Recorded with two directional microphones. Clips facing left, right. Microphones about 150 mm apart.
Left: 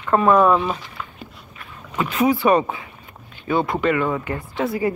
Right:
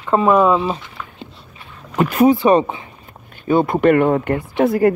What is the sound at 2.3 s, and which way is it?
Speech, 25° right (ahead or behind).